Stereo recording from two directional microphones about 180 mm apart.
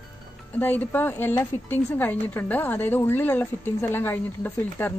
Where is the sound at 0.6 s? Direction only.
10° left (ahead or behind).